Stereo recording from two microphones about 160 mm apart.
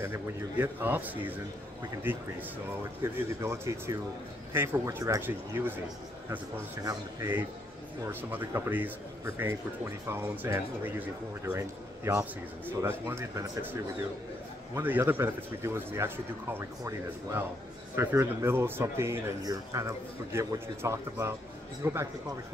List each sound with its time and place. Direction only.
0.0 s speech: 15° right (ahead or behind)
6.8 s speech: 15° right (ahead or behind)
14.8 s speech: 10° right (ahead or behind)